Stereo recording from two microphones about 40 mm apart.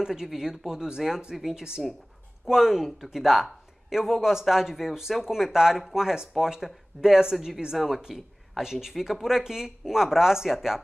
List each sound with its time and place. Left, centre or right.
0.0 s speech: centre